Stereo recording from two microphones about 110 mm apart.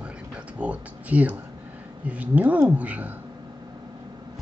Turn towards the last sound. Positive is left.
turn(degrees=-15)  # may be behind; listen again after turning